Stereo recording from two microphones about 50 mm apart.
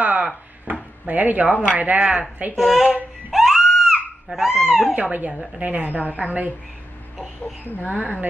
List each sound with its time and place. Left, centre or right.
0.0 s a sound: right
1.0 s speech: right
2.5 s speech: centre
3.3 s a sound: centre
4.9 s speech: right
7.6 s speech: left